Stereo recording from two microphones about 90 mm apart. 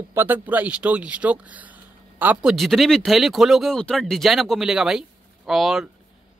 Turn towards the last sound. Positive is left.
turn(degrees=-5)  # may be behind; listen again after turning